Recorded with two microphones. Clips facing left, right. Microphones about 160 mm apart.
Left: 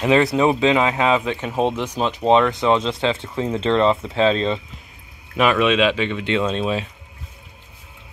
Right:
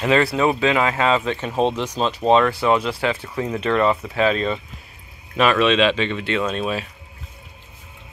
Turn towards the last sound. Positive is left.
turn(degrees=20)  # may be behind; listen again after turning